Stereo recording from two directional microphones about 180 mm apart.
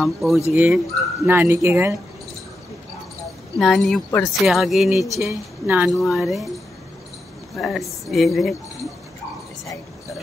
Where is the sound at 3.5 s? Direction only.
Centre (ahead or behind).